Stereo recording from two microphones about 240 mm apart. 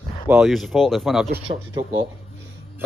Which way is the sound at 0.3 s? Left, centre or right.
Centre.